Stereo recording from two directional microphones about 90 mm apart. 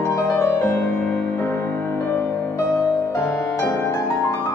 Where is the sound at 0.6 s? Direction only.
15° left (ahead or behind).